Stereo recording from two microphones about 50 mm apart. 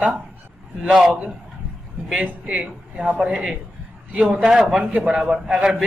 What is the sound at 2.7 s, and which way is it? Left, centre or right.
Speech, centre.